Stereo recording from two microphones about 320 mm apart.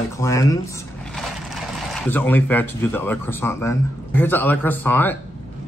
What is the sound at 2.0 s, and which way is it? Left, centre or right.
Speech, centre.